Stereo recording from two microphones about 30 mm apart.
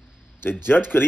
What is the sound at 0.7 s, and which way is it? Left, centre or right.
Speech, left.